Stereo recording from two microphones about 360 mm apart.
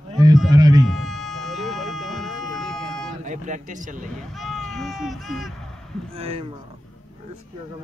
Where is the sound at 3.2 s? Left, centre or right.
Right.